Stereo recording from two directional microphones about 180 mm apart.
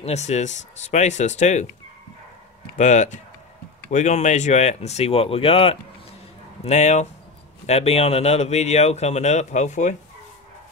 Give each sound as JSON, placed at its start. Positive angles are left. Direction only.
{"t": 0.0, "sound": "speech", "side_deg": 40}
{"t": 2.8, "sound": "speech", "side_deg": 40}